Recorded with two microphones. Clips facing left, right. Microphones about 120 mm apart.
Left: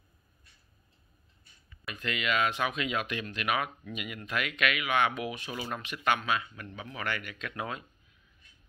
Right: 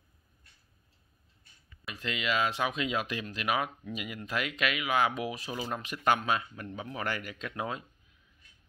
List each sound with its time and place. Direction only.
1.9 s speech: 25° right (ahead or behind)